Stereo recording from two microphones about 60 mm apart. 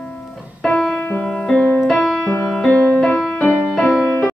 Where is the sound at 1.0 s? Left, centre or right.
Centre.